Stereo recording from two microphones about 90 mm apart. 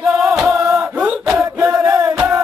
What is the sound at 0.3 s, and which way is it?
Chant, 5° right (ahead or behind).